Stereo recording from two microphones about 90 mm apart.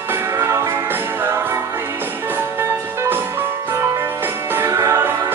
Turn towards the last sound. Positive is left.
turn(degrees=-30)  # may be behind; listen again after turning